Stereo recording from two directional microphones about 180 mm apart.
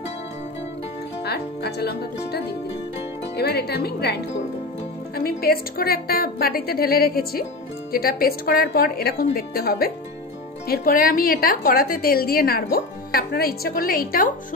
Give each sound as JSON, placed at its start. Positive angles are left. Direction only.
{"t": 1.2, "sound": "a woman's voice", "side_deg": 65}